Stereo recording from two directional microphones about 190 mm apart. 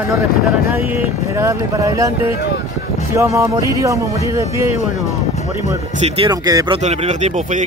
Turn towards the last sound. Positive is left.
turn(degrees=-40)  # may be behind; listen again after turning